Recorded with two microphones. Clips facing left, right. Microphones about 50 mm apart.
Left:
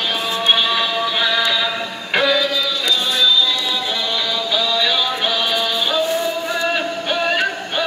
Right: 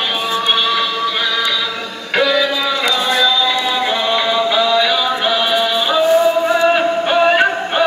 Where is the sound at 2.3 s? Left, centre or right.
Centre.